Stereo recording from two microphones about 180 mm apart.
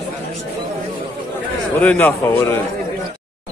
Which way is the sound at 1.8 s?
10° left (ahead or behind).